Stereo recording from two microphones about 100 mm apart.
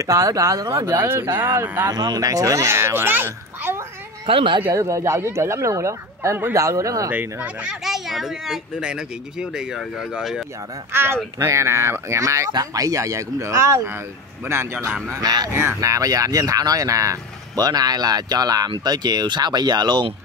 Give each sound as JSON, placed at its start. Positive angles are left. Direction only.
{"t": 0.0, "sound": "speech", "side_deg": -35}
{"t": 0.7, "sound": "a child's voice", "side_deg": -25}
{"t": 1.9, "sound": "a child's voice", "side_deg": -40}
{"t": 4.3, "sound": "speech", "side_deg": -60}
{"t": 4.7, "sound": "speech", "side_deg": -30}
{"t": 7.1, "sound": "speech", "side_deg": -20}
{"t": 7.8, "sound": "speech", "side_deg": -5}
{"t": 10.9, "sound": "a child's voice", "side_deg": -25}
{"t": 15.0, "sound": "speech", "side_deg": -40}
{"t": 15.5, "sound": "speech", "side_deg": -30}